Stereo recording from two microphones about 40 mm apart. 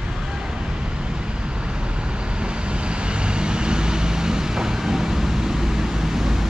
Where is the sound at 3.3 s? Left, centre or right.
Right.